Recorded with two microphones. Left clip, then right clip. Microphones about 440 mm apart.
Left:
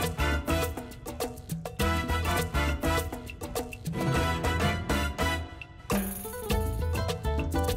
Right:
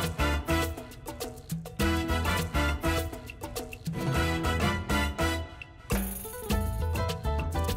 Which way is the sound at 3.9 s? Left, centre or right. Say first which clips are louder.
Left 1 dB; left.